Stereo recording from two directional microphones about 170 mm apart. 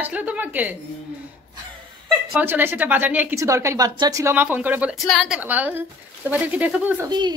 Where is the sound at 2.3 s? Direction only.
10° right (ahead or behind).